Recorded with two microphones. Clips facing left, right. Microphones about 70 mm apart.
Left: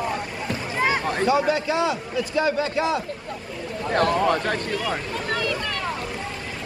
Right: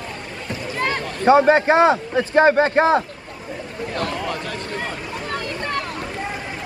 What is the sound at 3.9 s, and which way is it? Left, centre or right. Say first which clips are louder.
Speech: left 6 dB; left.